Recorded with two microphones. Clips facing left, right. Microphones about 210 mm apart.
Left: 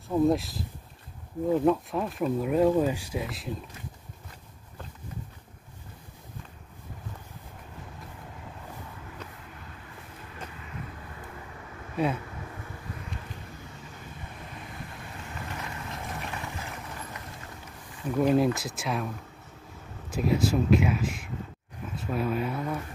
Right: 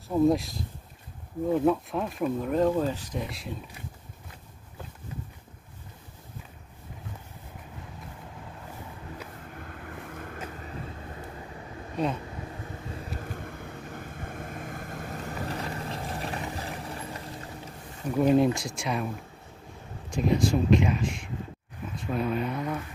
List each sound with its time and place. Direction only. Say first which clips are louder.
0.1 s speech: right 1 dB; centre (ahead or behind)
9.7 s vehicle: right 6 dB; 60° right (ahead or behind); by 10.8 s 40° right (ahead or behind)
12.0 s speech: left 1 dB; 5° left (ahead or behind)
13.2 s vehicle: right 5 dB; 50° right (ahead or behind); by 17.3 s 30° right (ahead or behind)
18.1 s speech: right 1 dB; centre (ahead or behind)
20.1 s speech: right 1 dB; 5° left (ahead or behind)